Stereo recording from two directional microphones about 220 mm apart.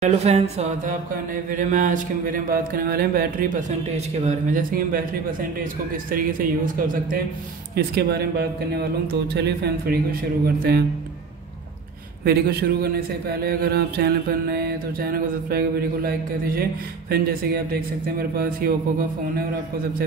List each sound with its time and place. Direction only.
0.0 s mantra: 30° right (ahead or behind)
7.7 s a man's voice: 45° right (ahead or behind)
12.3 s a man's voice: 45° right (ahead or behind)